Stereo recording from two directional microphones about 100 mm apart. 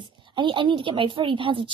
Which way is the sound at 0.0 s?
55° right (ahead or behind).